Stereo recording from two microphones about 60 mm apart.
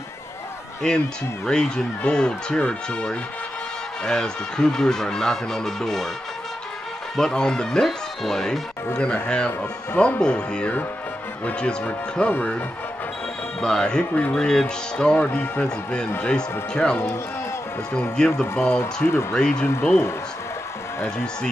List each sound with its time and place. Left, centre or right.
0.8 s speech: centre
7.2 s speech: centre; by 12.6 s left
13.6 s speech: centre
15.3 s speech: left
16.2 s speech: centre
18.2 s speech: centre
19.8 s speech: left